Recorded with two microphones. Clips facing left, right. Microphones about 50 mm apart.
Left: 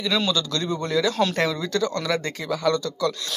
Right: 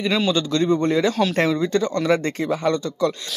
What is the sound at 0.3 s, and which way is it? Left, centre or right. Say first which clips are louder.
A man's voice: right 6 dB; right.